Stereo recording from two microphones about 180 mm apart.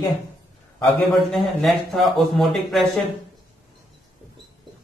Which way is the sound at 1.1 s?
Centre (ahead or behind).